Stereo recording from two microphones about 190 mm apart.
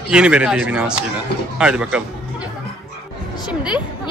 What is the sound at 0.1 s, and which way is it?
Speech, 5° right (ahead or behind).